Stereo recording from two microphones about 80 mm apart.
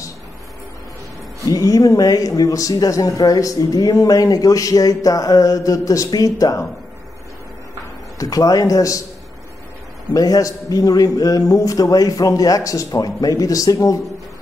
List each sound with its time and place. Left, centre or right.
1.5 s speech: left
8.2 s speech: left
10.1 s speech: left